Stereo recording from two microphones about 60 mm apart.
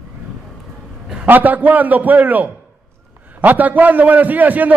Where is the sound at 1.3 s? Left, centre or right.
Right.